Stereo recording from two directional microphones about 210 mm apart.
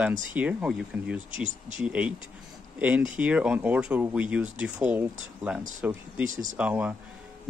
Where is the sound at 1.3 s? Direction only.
35° right (ahead or behind).